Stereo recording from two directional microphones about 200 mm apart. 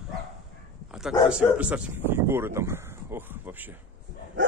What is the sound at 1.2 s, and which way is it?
Speech, 5° right (ahead or behind).